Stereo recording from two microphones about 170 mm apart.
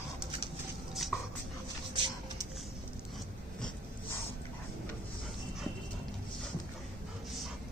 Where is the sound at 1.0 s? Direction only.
Centre (ahead or behind).